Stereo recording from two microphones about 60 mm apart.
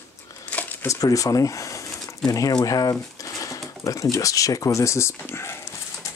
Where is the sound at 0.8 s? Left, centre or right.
Left.